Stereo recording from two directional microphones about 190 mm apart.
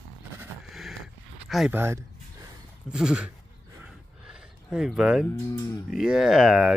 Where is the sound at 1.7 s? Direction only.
15° right (ahead or behind).